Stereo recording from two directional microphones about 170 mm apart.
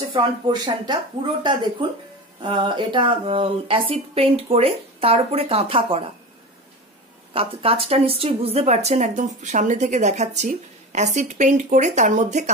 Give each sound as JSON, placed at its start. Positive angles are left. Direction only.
{"t": 0.1, "sound": "speech", "side_deg": -25}
{"t": 7.3, "sound": "a woman's voice", "side_deg": -35}